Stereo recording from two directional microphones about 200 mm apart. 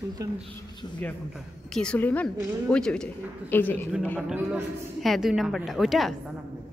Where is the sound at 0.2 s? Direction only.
15° right (ahead or behind).